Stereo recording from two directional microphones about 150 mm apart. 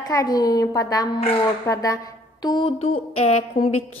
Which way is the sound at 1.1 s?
40° left (ahead or behind).